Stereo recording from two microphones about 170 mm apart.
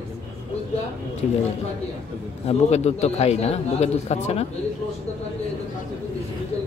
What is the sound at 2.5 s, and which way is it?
A man's voice, 40° left (ahead or behind).